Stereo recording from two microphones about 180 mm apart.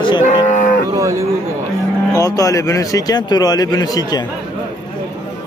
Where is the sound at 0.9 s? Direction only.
15° right (ahead or behind).